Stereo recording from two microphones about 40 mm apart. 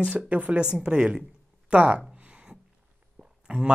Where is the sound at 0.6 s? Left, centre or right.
Right.